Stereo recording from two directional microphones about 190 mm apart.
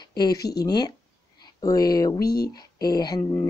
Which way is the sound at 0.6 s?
20° left (ahead or behind).